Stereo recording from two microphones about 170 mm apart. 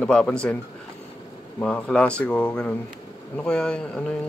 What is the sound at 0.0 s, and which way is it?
Speech, 5° left (ahead or behind).